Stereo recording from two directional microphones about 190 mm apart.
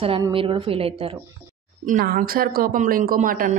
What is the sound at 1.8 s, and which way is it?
A woman's voice, 50° right (ahead or behind).